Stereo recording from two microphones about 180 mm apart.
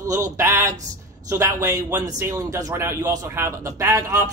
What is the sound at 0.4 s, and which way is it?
A man's voice, 15° right (ahead or behind).